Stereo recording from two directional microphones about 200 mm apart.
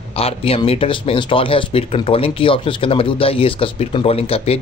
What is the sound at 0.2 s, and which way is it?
Speech, 30° left (ahead or behind).